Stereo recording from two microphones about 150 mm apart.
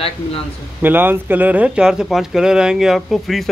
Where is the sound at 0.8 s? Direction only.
15° right (ahead or behind).